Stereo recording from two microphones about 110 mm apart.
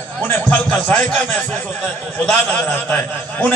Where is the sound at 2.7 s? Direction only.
15° left (ahead or behind).